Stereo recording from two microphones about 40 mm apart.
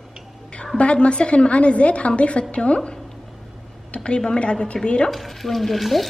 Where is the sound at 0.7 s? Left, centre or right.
Left.